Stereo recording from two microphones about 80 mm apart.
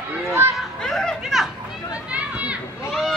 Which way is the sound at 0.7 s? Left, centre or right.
Centre.